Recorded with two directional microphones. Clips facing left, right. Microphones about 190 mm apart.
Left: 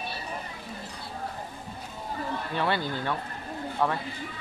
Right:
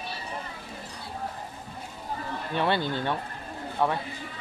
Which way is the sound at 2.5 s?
20° right (ahead or behind).